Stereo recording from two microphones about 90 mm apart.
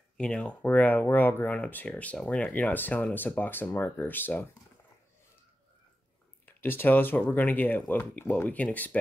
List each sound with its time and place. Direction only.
0.2 s speech: 10° left (ahead or behind)
6.4 s speech: 25° left (ahead or behind)